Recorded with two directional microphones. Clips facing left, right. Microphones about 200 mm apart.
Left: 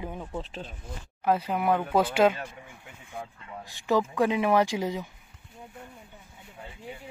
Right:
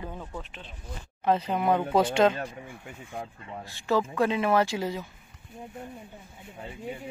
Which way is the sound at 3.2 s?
35° right (ahead or behind).